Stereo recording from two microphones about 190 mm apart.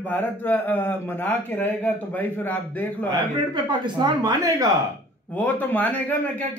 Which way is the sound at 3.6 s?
25° right (ahead or behind).